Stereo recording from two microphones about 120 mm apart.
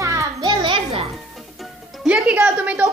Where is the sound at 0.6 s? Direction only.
50° right (ahead or behind).